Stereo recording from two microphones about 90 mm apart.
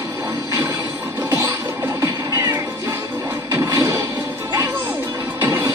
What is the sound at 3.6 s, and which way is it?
Music, 40° right (ahead or behind).